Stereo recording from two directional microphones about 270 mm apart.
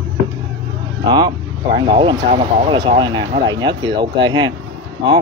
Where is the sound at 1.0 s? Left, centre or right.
Centre.